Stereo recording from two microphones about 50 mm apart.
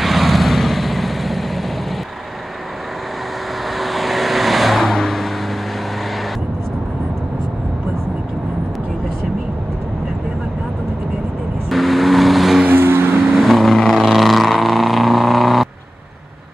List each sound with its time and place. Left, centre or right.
0.0 s vehicle: centre
3.7 s vehicle: centre
11.7 s vehicle: centre
12.6 s vehicle: right
13.4 s vehicle: centre